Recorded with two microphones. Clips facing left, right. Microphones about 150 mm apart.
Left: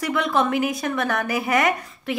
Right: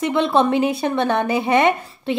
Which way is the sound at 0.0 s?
30° right (ahead or behind).